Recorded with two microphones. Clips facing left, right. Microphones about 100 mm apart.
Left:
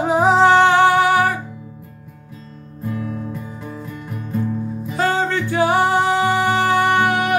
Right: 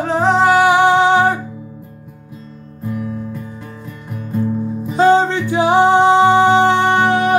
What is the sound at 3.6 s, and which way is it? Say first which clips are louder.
Music: left 1 dB; 5° left (ahead or behind).